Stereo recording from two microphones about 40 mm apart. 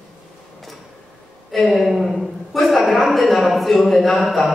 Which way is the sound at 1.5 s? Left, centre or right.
Centre.